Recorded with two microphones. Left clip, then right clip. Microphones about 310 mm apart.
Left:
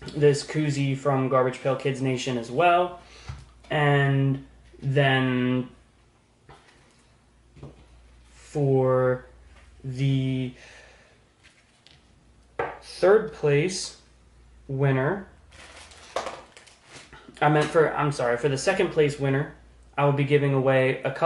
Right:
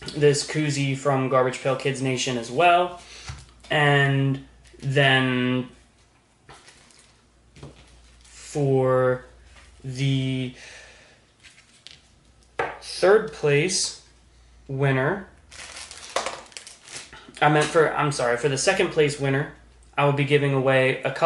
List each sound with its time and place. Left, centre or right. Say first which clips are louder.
0.0 s speech: right 1 dB; centre
8.7 s speech: right 2 dB; centre
11.9 s a sound: right 9 dB; centre
12.6 s chopping: right 1 dB; centre
14.8 s crumpling: right 2 dB; centre
20.0 s speech: right 2 dB; centre